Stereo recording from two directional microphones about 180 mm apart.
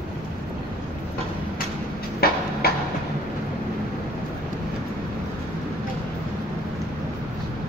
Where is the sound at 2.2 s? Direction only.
60° left (ahead or behind).